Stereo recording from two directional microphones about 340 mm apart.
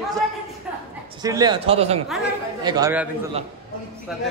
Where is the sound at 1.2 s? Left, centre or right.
Centre.